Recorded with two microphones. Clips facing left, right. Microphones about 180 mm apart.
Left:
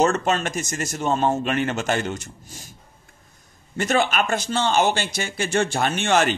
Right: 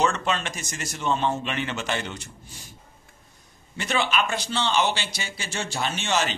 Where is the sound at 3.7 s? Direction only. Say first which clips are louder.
Left 4 dB; 45° left (ahead or behind).